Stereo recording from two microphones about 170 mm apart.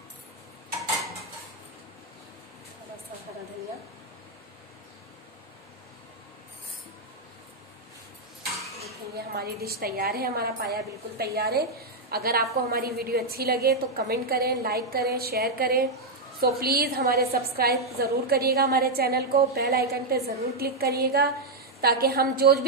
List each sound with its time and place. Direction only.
9.3 s a woman's voice: 65° right (ahead or behind)